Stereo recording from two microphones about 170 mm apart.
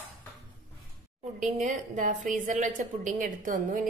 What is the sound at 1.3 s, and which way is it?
A woman's voice, 45° right (ahead or behind).